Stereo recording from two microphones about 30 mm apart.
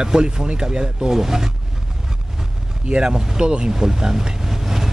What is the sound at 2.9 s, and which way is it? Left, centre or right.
Speech, right.